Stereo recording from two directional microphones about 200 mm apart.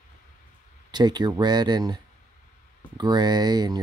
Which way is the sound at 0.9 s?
20° right (ahead or behind).